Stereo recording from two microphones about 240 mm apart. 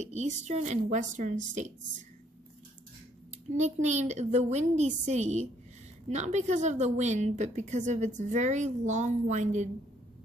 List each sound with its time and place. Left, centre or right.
0.0 s a woman's voice: right
3.5 s a woman's voice: right